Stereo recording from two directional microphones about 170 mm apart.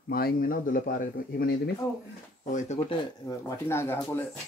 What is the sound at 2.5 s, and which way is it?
Speech, 45° left (ahead or behind).